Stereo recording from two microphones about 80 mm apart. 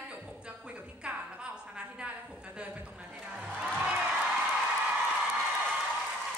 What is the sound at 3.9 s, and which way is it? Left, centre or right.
Music, centre.